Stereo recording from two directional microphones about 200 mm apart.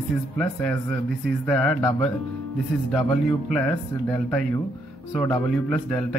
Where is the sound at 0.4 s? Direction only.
5° left (ahead or behind).